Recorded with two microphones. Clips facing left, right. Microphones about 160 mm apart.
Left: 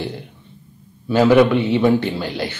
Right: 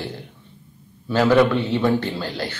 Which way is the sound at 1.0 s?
15° left (ahead or behind).